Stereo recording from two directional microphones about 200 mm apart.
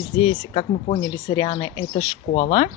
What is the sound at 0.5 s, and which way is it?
Speech, 30° left (ahead or behind).